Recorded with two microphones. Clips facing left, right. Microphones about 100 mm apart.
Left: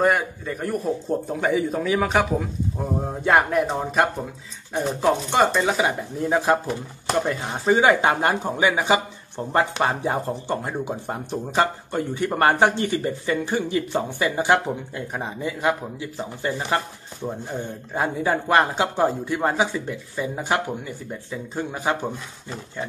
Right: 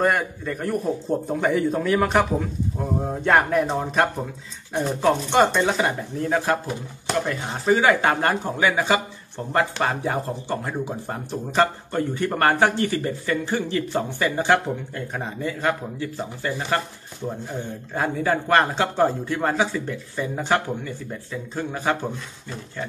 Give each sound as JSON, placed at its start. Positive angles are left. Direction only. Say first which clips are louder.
{"t": 0.0, "sound": "a man's voice", "louder": "left 1 dB", "side_deg": 5}
{"t": 6.3, "sound": "speech", "louder": "left 3 dB", "side_deg": 20}